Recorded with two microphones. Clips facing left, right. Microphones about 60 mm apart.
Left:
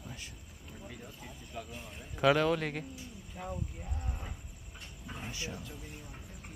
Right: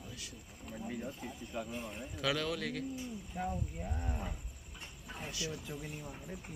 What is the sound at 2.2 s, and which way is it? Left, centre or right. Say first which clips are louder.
Speech: left 8 dB; left.